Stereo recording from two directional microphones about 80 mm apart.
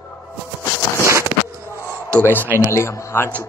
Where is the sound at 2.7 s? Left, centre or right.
Left.